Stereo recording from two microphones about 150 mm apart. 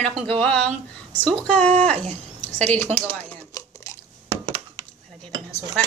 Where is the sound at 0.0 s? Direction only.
45° right (ahead or behind).